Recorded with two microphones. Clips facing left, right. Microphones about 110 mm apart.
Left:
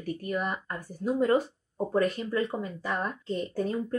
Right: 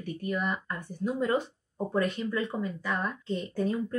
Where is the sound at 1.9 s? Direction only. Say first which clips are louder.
Left 2 dB; 40° left (ahead or behind).